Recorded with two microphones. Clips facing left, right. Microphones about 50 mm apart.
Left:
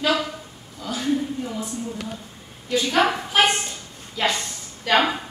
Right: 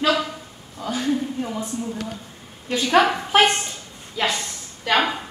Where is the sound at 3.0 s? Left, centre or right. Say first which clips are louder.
Right 3 dB; centre.